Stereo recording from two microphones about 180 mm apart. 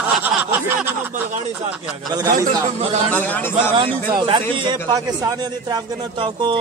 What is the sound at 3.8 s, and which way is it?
A man's voice, 25° right (ahead or behind).